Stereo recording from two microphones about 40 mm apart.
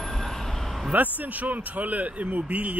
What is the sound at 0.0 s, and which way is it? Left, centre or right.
Vehicle, centre.